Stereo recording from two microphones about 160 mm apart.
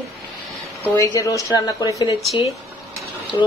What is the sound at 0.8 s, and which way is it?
Speech, 10° left (ahead or behind).